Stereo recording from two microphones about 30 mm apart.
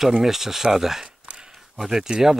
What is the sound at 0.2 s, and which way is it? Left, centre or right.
Speech, centre.